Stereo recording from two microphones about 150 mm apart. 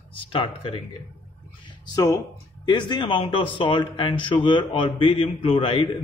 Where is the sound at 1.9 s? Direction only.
20° left (ahead or behind).